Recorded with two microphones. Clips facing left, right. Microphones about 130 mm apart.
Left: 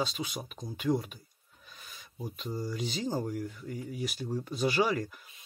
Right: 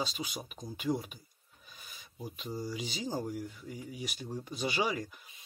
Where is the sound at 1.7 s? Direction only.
5° right (ahead or behind).